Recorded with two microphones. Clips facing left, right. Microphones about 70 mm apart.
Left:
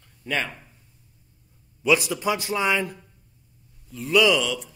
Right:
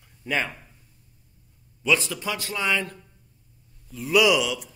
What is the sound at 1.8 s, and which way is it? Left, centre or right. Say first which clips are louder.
A man's voice: left 3 dB; centre.